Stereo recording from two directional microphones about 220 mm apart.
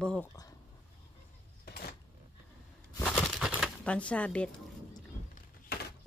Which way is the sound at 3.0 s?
Centre (ahead or behind).